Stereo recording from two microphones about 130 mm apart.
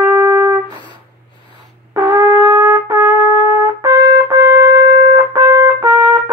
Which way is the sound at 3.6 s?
25° right (ahead or behind).